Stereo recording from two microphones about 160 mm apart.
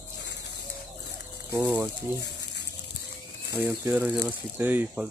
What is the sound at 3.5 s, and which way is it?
Speech, 15° right (ahead or behind).